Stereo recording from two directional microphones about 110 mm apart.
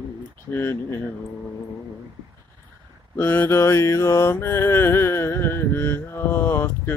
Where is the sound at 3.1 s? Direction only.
20° left (ahead or behind).